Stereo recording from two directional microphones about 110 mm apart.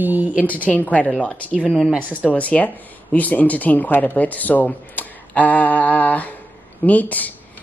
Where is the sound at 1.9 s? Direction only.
10° right (ahead or behind).